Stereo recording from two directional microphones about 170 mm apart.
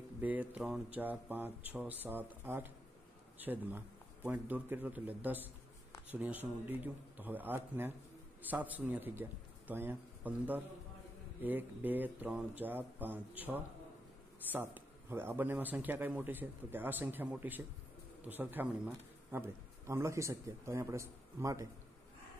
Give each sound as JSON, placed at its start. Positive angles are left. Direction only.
{"t": 0.2, "sound": "a man's voice", "side_deg": -10}